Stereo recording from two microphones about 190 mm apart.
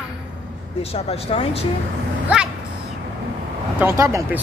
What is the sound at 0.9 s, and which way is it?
Speech, 30° left (ahead or behind).